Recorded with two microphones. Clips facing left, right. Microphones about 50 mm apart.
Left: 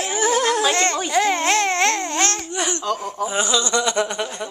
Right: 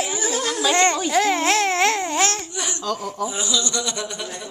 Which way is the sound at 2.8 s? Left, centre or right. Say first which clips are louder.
Left 2 dB; left.